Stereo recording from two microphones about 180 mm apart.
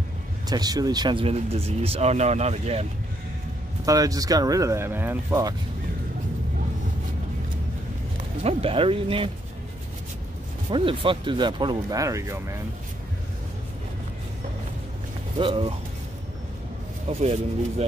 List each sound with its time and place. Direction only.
0.5 s speech: 20° right (ahead or behind); by 2.9 s 35° right (ahead or behind)
3.8 s speech: 20° right (ahead or behind)
8.4 s speech: 35° right (ahead or behind)
10.7 s speech: 30° right (ahead or behind)
15.3 s speech: 30° right (ahead or behind)
17.2 s speech: 35° right (ahead or behind)